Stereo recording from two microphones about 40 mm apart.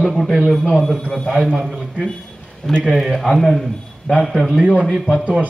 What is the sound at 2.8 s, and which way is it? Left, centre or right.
Speech, centre.